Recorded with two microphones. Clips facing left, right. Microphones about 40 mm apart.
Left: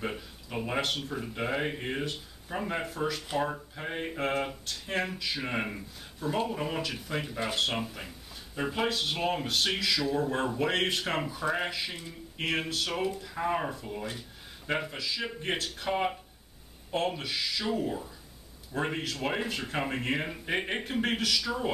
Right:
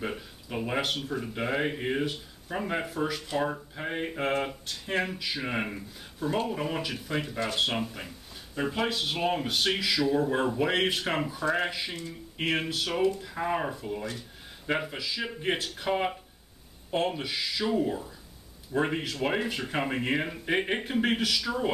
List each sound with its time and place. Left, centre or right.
0.0 s speech: centre